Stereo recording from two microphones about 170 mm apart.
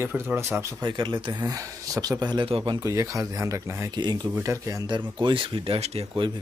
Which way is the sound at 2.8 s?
15° right (ahead or behind).